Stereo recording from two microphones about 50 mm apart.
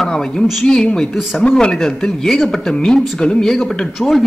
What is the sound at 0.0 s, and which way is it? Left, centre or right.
A man's voice, centre.